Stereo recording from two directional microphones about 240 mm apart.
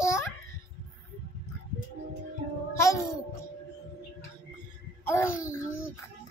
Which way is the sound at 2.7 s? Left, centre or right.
Centre.